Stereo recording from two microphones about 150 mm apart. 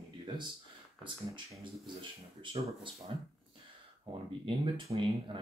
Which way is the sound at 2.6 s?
35° right (ahead or behind).